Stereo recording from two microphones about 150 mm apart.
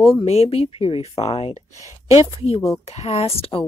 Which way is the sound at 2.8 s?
45° left (ahead or behind).